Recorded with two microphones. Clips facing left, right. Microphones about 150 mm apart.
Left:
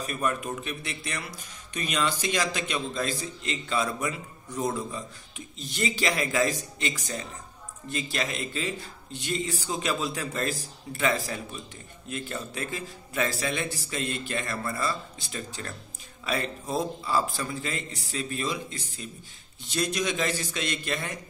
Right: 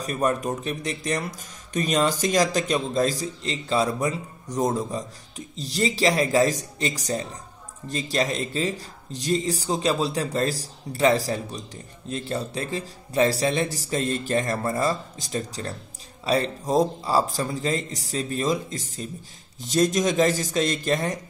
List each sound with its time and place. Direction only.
0.0 s speech: 35° right (ahead or behind)